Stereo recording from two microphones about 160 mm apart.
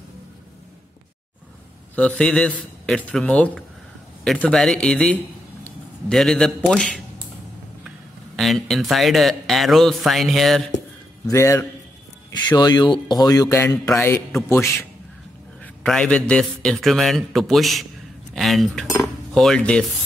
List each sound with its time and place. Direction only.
2.0 s a man's voice: 10° left (ahead or behind)
8.4 s speech: centre (ahead or behind)
11.2 s a man's voice: 20° left (ahead or behind)
15.6 s speech: 5° left (ahead or behind)
18.3 s cutlery: centre (ahead or behind)